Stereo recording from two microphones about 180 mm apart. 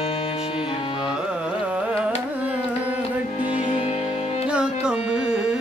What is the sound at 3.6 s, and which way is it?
Music, 35° left (ahead or behind).